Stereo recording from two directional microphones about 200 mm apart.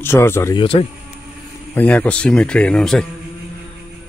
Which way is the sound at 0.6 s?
30° left (ahead or behind).